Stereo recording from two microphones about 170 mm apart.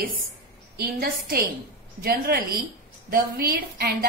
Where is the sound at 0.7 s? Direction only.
65° right (ahead or behind).